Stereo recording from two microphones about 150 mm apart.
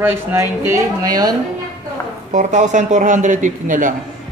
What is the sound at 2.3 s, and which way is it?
A man's voice, 55° right (ahead or behind).